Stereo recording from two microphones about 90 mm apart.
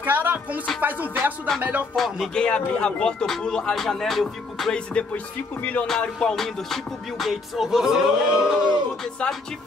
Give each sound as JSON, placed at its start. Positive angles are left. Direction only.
{"t": 0.0, "sound": "music", "side_deg": -25}
{"t": 0.7, "sound": "speech", "side_deg": -20}
{"t": 1.6, "sound": "music", "side_deg": -20}
{"t": 2.0, "sound": "music", "side_deg": 0}
{"t": 2.3, "sound": "speech", "side_deg": 10}
{"t": 5.9, "sound": "music", "side_deg": 5}
{"t": 9.0, "sound": "music", "side_deg": 5}